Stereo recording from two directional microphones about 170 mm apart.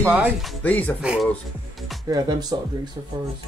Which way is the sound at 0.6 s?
10° left (ahead or behind).